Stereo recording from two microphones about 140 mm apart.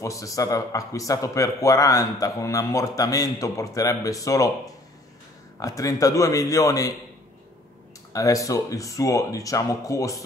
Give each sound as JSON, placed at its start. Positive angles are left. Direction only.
{"t": 0.0, "sound": "a man's voice", "side_deg": 25}
{"t": 5.6, "sound": "a man's voice", "side_deg": 25}
{"t": 8.1, "sound": "a man's voice", "side_deg": 25}